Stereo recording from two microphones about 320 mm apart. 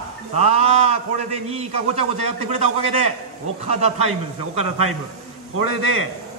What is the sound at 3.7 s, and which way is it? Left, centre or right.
Speech, centre.